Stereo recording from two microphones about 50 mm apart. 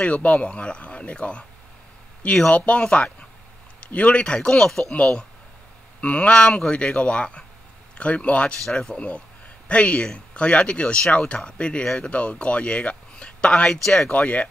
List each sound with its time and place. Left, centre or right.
0.0 s speech: left
2.5 s speech: left; by 4.9 s centre
5.9 s speech: left
8.6 s speech: centre
11.8 s speech: centre
12.1 s speech: left
13.1 s a sound: left
14.0 s speech: left